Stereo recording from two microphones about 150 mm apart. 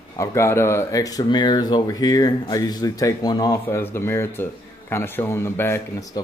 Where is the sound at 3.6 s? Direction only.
15° left (ahead or behind).